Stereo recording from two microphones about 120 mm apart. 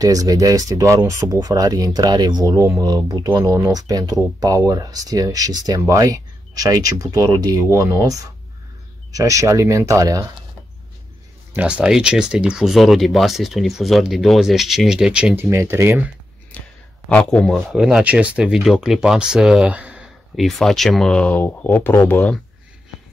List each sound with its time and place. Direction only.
0.0 s speech: 30° right (ahead or behind)
11.5 s speech: 10° right (ahead or behind)
15.3 s speech: 20° right (ahead or behind)
16.5 s a sound: 10° left (ahead or behind)
17.1 s speech: 10° left (ahead or behind); by 20.1 s 10° right (ahead or behind)
20.3 s speech: centre (ahead or behind); by 22.3 s 15° left (ahead or behind)